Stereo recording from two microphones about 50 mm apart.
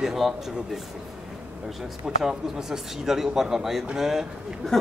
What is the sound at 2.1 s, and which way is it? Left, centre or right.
A man's voice, centre.